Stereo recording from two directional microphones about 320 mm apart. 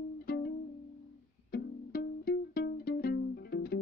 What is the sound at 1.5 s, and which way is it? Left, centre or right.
Music, left.